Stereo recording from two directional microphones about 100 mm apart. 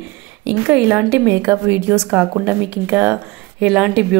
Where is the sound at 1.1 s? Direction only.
30° right (ahead or behind).